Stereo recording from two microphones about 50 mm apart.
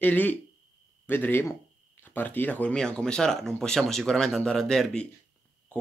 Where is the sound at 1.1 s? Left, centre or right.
Left.